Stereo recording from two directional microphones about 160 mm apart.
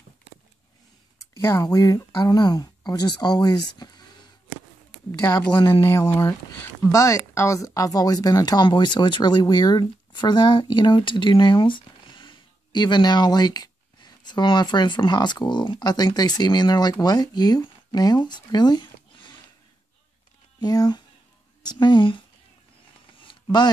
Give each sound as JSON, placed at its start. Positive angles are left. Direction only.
{"t": 1.3, "sound": "speech", "side_deg": 20}
{"t": 5.9, "sound": "speech", "side_deg": 15}
{"t": 20.6, "sound": "speech", "side_deg": 25}
{"t": 23.2, "sound": "a sound", "side_deg": 25}